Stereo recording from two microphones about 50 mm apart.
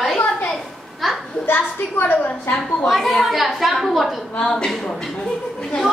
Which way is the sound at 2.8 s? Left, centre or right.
Centre.